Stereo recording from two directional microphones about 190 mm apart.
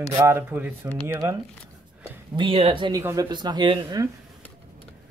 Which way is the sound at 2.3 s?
30° right (ahead or behind).